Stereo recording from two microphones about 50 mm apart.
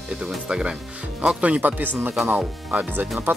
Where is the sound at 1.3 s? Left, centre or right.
Right.